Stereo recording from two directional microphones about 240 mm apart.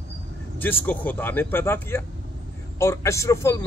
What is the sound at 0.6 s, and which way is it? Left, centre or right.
A man's voice, centre.